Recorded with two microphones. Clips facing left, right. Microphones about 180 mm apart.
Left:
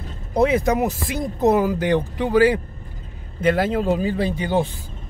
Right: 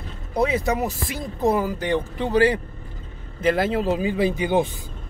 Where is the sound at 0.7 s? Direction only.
20° left (ahead or behind).